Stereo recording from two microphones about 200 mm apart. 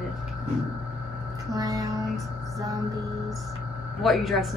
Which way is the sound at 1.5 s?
20° right (ahead or behind).